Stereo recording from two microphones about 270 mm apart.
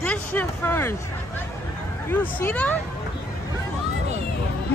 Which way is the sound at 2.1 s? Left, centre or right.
Centre.